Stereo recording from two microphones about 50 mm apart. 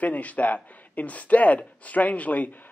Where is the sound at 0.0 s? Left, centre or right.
Left.